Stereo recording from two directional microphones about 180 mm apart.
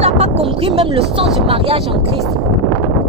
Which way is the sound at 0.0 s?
35° right (ahead or behind).